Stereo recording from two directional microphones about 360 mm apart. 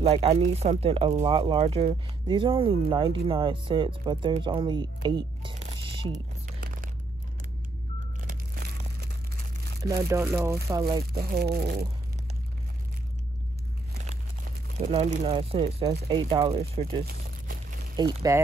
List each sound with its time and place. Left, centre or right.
0.0 s speech: centre
8.2 s crushing: right
9.8 s speech: centre
11.3 s speech: right
14.8 s speech: centre
17.9 s speech: centre